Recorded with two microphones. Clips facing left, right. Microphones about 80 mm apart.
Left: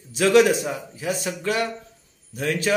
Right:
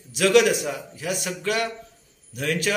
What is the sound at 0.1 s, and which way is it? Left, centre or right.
A man's voice, left.